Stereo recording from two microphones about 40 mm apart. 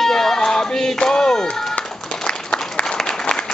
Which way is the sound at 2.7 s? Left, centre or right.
Left.